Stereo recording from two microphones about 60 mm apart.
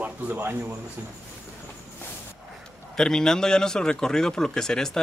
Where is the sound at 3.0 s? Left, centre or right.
Centre.